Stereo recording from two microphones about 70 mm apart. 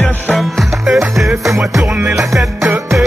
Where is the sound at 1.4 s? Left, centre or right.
Right.